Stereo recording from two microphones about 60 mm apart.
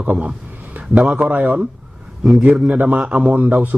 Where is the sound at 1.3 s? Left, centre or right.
Right.